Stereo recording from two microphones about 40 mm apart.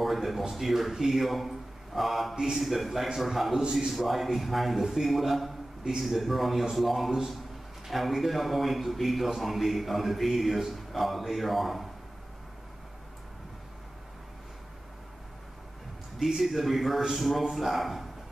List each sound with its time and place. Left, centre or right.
0.0 s a man's voice: centre
2.3 s speech: centre
2.6 s a man's voice: centre
16.3 s a man's voice: centre